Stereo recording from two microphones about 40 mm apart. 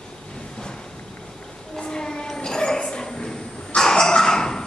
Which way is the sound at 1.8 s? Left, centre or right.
Centre.